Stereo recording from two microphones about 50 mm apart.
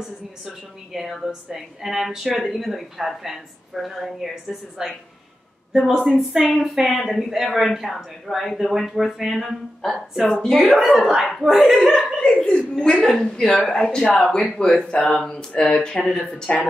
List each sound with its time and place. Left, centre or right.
0.0 s a woman's voice: centre
10.4 s speech: centre
10.7 s a woman's voice: centre
12.0 s speech: centre